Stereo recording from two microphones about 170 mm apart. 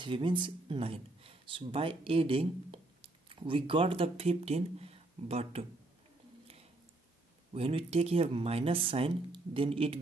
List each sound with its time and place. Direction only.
0.0 s speech: 30° right (ahead or behind)
7.5 s speech: 35° right (ahead or behind)